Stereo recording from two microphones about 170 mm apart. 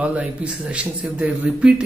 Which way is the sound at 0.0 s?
5° right (ahead or behind).